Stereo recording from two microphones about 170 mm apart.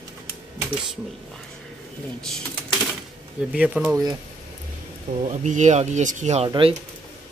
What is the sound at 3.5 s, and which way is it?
Speech, 5° right (ahead or behind).